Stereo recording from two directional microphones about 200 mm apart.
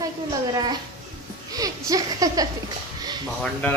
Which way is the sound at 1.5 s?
20° right (ahead or behind).